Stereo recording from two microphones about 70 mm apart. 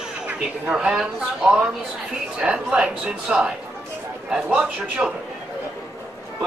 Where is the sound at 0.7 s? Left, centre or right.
Centre.